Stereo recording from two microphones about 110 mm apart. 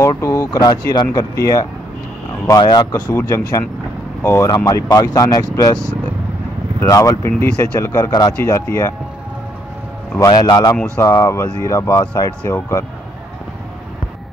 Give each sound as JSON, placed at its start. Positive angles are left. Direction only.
{"t": 0.2, "sound": "speech", "side_deg": 30}
{"t": 2.6, "sound": "speech", "side_deg": 40}
{"t": 2.9, "sound": "speech", "side_deg": 30}
{"t": 4.6, "sound": "speech", "side_deg": 30}
{"t": 6.8, "sound": "speech", "side_deg": 30}
{"t": 7.9, "sound": "speech", "side_deg": 35}
{"t": 10.2, "sound": "speech", "side_deg": 35}